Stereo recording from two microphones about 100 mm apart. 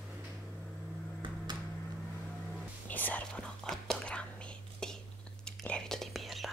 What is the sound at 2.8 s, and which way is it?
Whispering, 15° left (ahead or behind).